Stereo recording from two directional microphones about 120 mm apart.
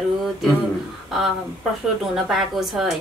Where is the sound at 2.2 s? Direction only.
Centre (ahead or behind).